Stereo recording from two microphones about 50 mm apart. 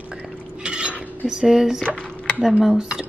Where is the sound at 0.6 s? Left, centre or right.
Centre.